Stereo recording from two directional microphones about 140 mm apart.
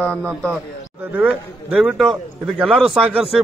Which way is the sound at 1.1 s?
5° right (ahead or behind).